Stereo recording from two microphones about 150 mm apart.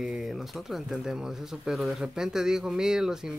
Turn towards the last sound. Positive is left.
turn(degrees=-5)  # may be behind; listen again after turning